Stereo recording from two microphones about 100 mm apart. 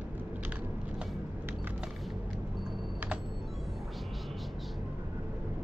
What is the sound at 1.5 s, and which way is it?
Music, 20° right (ahead or behind).